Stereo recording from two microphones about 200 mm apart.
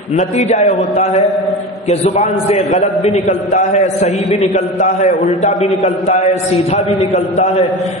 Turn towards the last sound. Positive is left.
turn(degrees=35)  # may be behind; listen again after turning